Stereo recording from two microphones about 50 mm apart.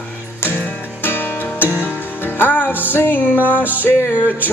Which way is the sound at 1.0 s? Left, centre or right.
Left.